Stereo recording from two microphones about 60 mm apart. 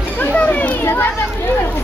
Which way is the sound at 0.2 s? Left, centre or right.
Left.